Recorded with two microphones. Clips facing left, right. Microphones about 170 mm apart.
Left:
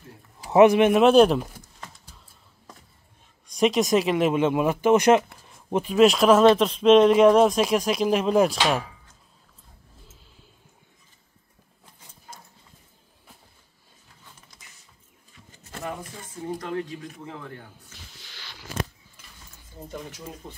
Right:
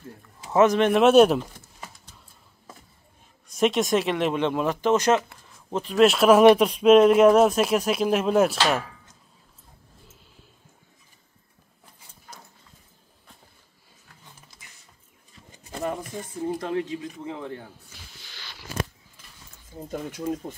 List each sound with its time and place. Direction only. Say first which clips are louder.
0.5 s speech: left 3 dB; 15° left (ahead or behind)
1.0 s speech: right 2 dB; 5° right (ahead or behind)
2.1 s a sound: even; 10° left (ahead or behind)
2.7 s music: right 1 dB; 5° right (ahead or behind)
3.4 s speech: left 1 dB; centre (ahead or behind)
5.9 s speech: right 1 dB; 5° right (ahead or behind)
16.5 s speech: right 3 dB; 25° right (ahead or behind)
19.9 s speech: right 9 dB; 50° right (ahead or behind)